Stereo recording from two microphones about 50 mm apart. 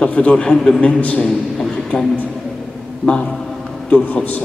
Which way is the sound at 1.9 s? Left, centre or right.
Left.